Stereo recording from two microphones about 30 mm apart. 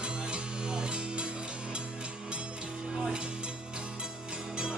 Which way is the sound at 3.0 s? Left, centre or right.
Right.